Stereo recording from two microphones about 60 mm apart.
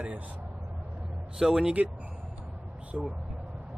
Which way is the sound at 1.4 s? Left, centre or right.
Centre.